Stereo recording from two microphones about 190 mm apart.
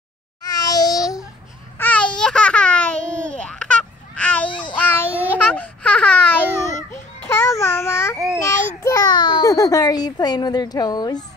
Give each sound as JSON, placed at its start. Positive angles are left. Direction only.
{"t": 0.4, "sound": "babbling", "side_deg": 20}
{"t": 1.8, "sound": "babbling", "side_deg": 5}
{"t": 2.1, "sound": "baby laughter", "side_deg": 5}
{"t": 4.7, "sound": "child singing", "side_deg": 10}
{"t": 5.1, "sound": "babbling", "side_deg": -10}
{"t": 5.4, "sound": "baby laughter", "side_deg": 5}
{"t": 7.2, "sound": "babbling", "side_deg": 15}
{"t": 8.5, "sound": "a sound", "side_deg": 15}